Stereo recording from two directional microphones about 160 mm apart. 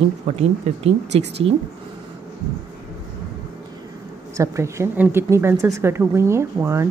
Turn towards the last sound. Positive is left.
turn(degrees=-15)  # may be behind; listen again after turning